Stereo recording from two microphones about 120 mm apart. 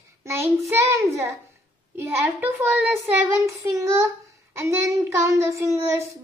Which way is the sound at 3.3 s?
25° right (ahead or behind).